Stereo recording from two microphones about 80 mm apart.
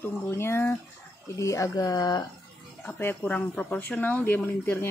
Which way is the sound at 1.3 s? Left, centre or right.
Left.